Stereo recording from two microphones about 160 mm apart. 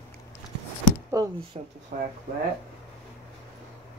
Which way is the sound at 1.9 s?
60° right (ahead or behind).